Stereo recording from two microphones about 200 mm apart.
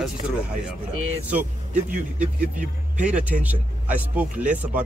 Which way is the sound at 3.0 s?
5° right (ahead or behind).